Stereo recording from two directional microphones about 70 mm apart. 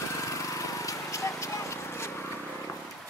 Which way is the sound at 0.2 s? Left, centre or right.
Left.